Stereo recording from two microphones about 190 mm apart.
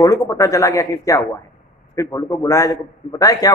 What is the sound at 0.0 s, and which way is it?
A man's voice, 15° left (ahead or behind).